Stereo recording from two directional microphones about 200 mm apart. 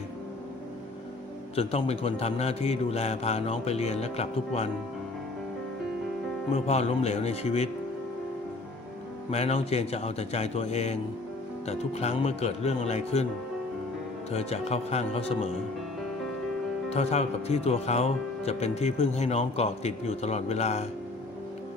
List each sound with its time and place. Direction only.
1.5 s speech: 30° left (ahead or behind)
6.5 s speech: 30° left (ahead or behind)
9.3 s speech: 30° left (ahead or behind)
14.3 s speech: 30° left (ahead or behind)
16.9 s speech: 30° left (ahead or behind)